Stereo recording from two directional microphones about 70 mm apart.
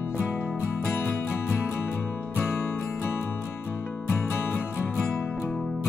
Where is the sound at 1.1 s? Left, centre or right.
Left.